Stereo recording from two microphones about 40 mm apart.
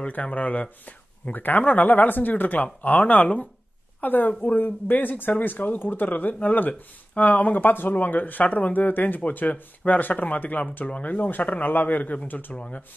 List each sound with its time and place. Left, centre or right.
0.1 s speech: left